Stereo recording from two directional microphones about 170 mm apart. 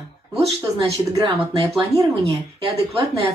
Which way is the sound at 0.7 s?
30° right (ahead or behind).